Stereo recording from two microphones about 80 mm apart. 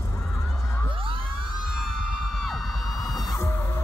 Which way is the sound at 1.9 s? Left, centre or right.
Centre.